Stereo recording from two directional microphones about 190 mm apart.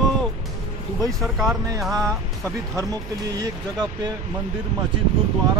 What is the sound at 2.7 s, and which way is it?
Speech, 20° right (ahead or behind).